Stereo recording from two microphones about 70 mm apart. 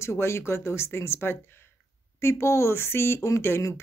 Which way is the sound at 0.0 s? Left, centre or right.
Left.